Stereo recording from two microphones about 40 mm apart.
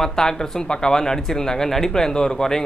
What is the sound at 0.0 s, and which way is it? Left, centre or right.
Speech, centre.